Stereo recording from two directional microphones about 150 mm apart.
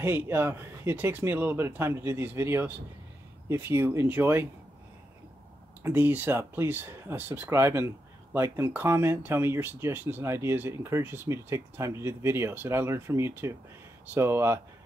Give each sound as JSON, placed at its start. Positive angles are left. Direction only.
{"t": 0.0, "sound": "speech", "side_deg": -15}
{"t": 5.8, "sound": "speech", "side_deg": -15}